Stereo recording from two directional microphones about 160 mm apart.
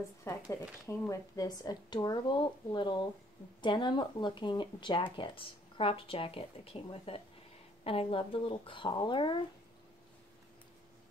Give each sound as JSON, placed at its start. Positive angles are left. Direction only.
{"t": 0.5, "sound": "speech", "side_deg": 15}